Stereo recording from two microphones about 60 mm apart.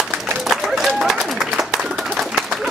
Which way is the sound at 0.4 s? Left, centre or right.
Centre.